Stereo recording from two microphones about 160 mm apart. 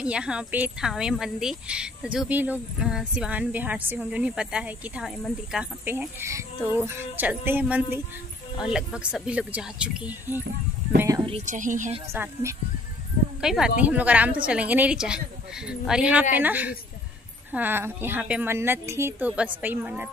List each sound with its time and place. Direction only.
0.0 s speech: 5° right (ahead or behind)
11.4 s speech: 55° right (ahead or behind)
12.1 s speech: 15° right (ahead or behind)
13.4 s speech: 5° right (ahead or behind)